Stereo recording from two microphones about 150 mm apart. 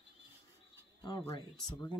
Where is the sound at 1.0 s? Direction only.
30° left (ahead or behind).